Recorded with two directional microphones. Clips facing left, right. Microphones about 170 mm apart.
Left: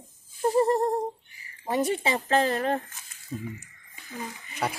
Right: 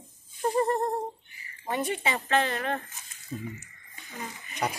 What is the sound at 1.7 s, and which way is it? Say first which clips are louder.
Speech: left 4 dB; 35° left (ahead or behind).